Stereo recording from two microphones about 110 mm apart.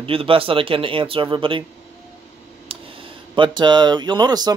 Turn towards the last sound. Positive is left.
turn(degrees=-40)  # may be behind; listen again after turning